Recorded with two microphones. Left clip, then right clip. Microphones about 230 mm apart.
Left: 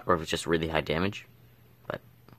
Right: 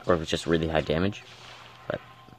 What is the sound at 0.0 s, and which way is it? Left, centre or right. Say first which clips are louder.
Speech: right 2 dB; centre.